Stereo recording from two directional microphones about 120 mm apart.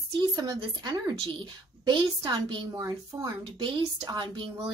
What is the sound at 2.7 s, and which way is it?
Speech, 25° right (ahead or behind).